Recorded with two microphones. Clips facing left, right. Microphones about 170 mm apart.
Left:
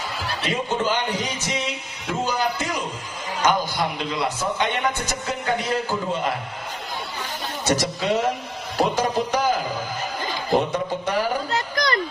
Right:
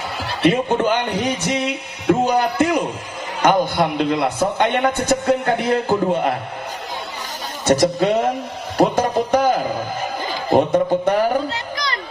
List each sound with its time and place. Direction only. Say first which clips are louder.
0.4 s a man's voice: right 9 dB; 60° right (ahead or behind)
7.6 s a man's voice: right 8 dB; 55° right (ahead or behind)
8.7 s music: right 5 dB; 55° right (ahead or behind)
10.5 s a man's voice: right 7 dB; 55° right (ahead or behind)
11.5 s a sound: left 3 dB; 50° left (ahead or behind)